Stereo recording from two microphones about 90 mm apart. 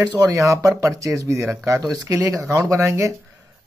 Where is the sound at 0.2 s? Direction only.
40° right (ahead or behind).